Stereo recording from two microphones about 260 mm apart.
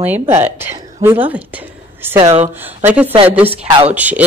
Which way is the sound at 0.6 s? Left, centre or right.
Centre.